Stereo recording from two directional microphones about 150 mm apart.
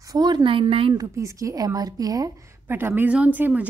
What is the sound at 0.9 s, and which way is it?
A woman's voice, 20° right (ahead or behind).